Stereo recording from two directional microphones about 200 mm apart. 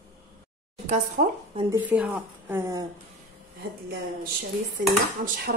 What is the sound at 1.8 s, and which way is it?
A woman's voice, 5° right (ahead or behind).